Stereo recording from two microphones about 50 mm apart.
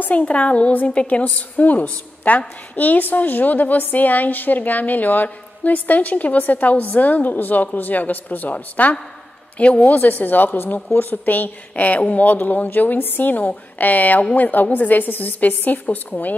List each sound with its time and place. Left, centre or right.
0.0 s a woman's voice: left
9.9 s a woman's voice: left